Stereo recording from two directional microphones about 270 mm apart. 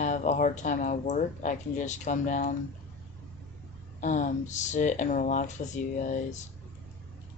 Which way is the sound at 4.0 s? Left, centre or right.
Left.